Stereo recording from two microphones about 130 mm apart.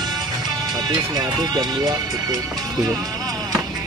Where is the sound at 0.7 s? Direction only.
35° right (ahead or behind).